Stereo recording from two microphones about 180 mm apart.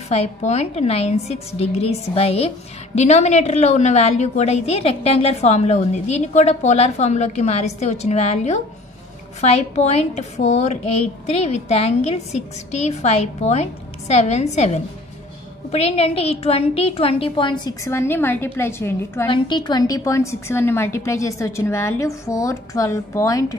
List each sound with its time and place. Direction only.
0.1 s a woman's voice: 35° left (ahead or behind)
15.7 s a woman's voice: 35° left (ahead or behind); by 19.2 s 15° left (ahead or behind)
19.2 s a woman's voice: 25° left (ahead or behind)